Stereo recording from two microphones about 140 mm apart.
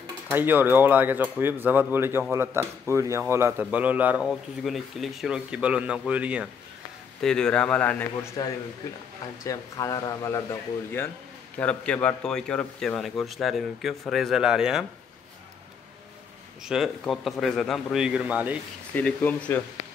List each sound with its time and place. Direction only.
0.3 s speech: 15° right (ahead or behind)
4.3 s speech: centre (ahead or behind)
7.2 s speech: 5° left (ahead or behind)
9.4 s speech: 25° left (ahead or behind)
11.5 s speech: 10° left (ahead or behind)
16.6 s speech: 5° right (ahead or behind)
18.9 s speech: 10° left (ahead or behind)